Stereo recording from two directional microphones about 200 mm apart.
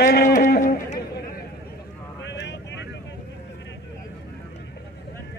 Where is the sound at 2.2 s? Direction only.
60° left (ahead or behind).